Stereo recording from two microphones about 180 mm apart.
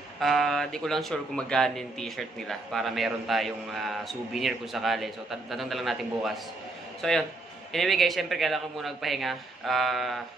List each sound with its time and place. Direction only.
0.2 s a man's voice: centre (ahead or behind)